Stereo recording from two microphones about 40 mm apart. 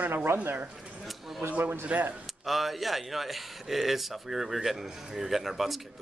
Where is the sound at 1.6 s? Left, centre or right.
Right.